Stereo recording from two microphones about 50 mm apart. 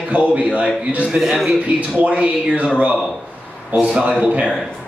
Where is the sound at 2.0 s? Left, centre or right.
Right.